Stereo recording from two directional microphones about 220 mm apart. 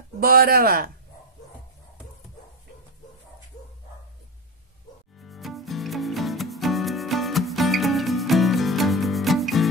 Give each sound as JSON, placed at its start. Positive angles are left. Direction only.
{"t": 0.2, "sound": "speech", "side_deg": -45}
{"t": 5.2, "sound": "music", "side_deg": 0}